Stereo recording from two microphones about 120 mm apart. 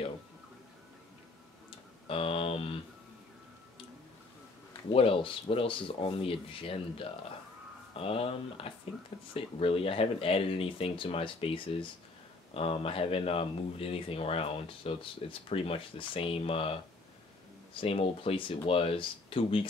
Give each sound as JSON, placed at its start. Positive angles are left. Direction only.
{"t": 2.0, "sound": "speech", "side_deg": 55}
{"t": 4.9, "sound": "speech", "side_deg": 50}